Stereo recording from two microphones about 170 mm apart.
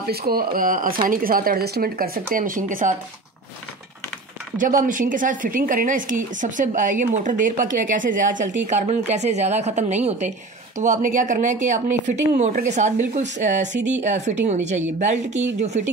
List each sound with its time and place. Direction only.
0.1 s a woman's voice: 60° right (ahead or behind)
4.6 s a woman's voice: 50° right (ahead or behind)